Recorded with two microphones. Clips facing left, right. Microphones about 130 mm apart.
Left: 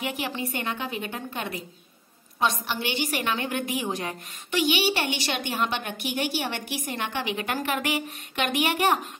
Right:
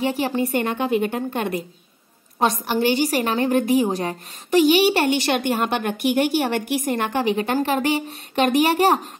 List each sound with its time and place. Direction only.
0.0 s a woman's voice: 35° right (ahead or behind)